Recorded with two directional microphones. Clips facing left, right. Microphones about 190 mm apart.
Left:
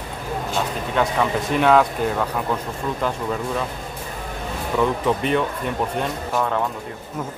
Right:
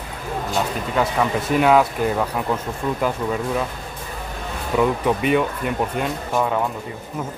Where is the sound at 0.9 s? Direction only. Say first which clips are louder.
Even; 5° right (ahead or behind).